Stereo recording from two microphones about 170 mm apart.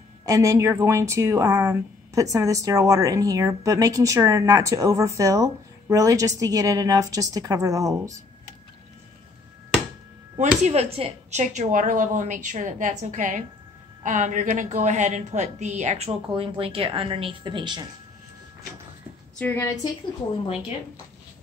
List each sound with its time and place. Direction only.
0.2 s speech: 20° right (ahead or behind)
10.6 s a woman's voice: 40° right (ahead or behind)
19.3 s a woman's voice: 10° left (ahead or behind)